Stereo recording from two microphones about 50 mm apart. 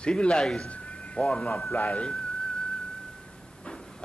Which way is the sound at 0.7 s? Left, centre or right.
Left.